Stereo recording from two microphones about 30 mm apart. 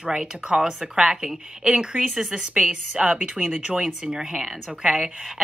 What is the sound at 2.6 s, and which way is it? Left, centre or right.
A woman's voice, right.